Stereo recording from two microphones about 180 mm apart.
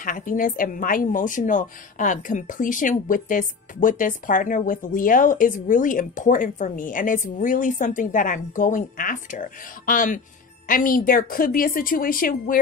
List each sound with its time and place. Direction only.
0.0 s a woman's voice: 45° left (ahead or behind)